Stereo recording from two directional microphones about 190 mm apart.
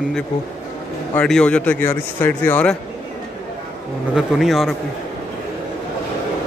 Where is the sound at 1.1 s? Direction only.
5° left (ahead or behind).